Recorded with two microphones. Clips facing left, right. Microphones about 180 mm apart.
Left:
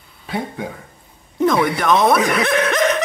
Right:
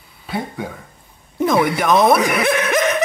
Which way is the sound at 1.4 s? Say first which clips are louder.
Even; 10° right (ahead or behind).